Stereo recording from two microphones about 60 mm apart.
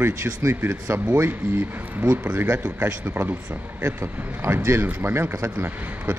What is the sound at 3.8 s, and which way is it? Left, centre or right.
Speech, right.